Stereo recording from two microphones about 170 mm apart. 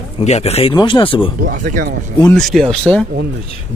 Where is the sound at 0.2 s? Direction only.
40° left (ahead or behind).